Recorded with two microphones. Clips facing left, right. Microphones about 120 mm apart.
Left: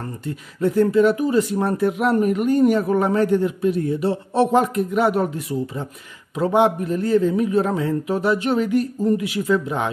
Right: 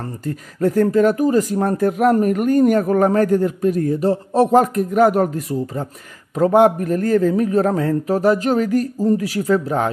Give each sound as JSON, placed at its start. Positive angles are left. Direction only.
{"t": 0.2, "sound": "speech", "side_deg": -40}